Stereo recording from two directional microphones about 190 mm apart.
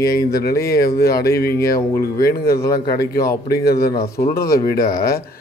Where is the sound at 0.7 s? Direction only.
55° left (ahead or behind).